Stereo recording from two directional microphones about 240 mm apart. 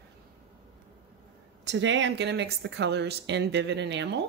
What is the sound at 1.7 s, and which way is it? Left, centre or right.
Speech, right.